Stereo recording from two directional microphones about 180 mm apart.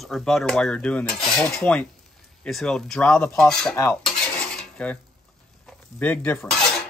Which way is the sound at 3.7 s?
15° left (ahead or behind).